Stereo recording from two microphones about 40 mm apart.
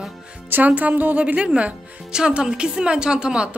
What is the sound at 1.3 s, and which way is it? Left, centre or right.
Speech, right.